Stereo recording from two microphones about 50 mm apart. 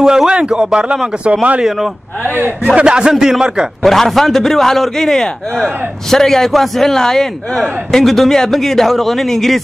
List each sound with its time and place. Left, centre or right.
0.0 s a man's voice: centre
2.6 s a man's voice: right
3.8 s a man's voice: centre